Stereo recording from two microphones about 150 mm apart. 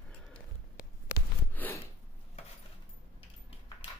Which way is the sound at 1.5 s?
10° left (ahead or behind).